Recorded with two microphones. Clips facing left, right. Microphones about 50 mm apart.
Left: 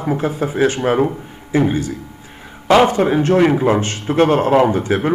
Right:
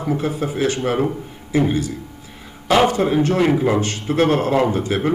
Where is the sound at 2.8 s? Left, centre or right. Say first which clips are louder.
Left 2 dB; left.